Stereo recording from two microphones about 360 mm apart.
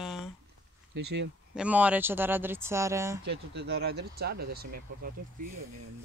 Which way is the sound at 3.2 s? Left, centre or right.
Right.